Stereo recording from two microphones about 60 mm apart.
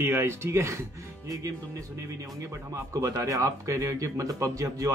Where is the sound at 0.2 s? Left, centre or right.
Right.